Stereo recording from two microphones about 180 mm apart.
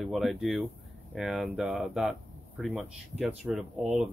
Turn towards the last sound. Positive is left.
turn(degrees=-5)  # may be behind; listen again after turning